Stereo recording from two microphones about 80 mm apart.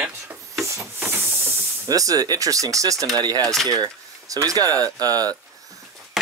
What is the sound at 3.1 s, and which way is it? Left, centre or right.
Speech, right.